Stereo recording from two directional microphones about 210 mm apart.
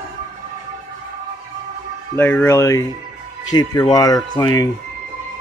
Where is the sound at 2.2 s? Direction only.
10° left (ahead or behind).